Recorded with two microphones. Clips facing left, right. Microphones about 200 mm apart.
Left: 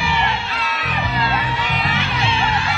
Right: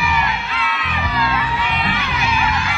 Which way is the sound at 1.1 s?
30° left (ahead or behind).